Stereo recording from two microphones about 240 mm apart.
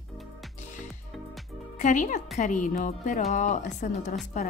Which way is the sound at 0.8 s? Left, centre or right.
Centre.